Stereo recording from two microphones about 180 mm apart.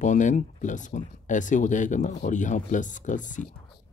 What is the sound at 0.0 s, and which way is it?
Speech, 45° left (ahead or behind).